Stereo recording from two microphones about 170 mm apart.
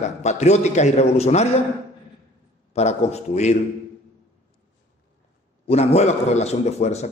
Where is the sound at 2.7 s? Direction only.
40° left (ahead or behind).